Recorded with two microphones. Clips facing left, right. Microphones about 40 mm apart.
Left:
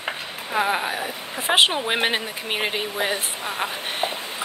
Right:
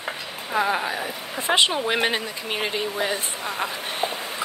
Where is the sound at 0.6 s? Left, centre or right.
Centre.